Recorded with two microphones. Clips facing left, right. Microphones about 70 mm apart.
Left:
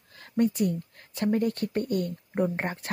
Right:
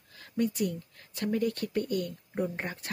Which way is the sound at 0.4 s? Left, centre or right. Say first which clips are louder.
Left 5 dB; left.